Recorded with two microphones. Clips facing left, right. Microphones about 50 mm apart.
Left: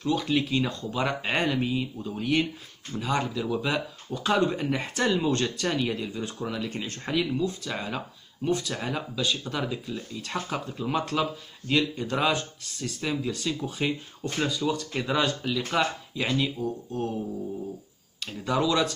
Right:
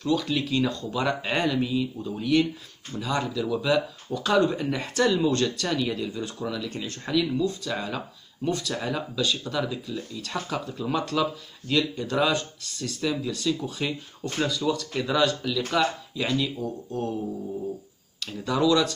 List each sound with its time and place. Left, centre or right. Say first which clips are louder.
0.0 s speech: even; left
18.2 s speech: right 2 dB; left